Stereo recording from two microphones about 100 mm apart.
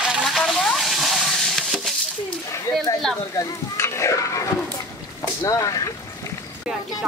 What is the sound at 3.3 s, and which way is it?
Speech, 30° left (ahead or behind).